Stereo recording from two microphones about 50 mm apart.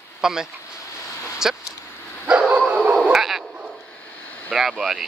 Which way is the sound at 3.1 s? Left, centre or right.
Centre.